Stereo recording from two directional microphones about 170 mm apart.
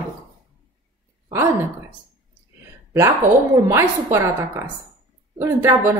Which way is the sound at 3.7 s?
15° right (ahead or behind).